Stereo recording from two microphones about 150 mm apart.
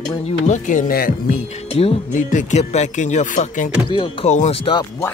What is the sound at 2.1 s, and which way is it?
Speech, 55° left (ahead or behind).